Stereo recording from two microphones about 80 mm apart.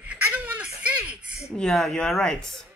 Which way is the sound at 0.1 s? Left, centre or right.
Centre.